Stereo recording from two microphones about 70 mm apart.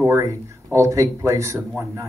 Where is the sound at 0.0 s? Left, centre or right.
Right.